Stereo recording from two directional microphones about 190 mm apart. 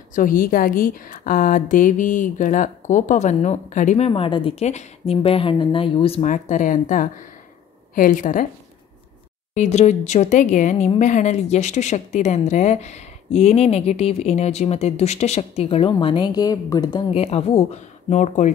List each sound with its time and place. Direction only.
0.1 s a woman's voice: 45° left (ahead or behind)
9.5 s a woman's voice: 35° left (ahead or behind)